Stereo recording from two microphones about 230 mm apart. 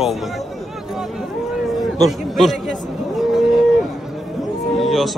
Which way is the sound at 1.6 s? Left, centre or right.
Centre.